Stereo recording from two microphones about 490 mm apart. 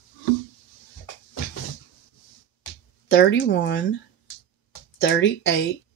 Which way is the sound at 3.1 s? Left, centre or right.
Left.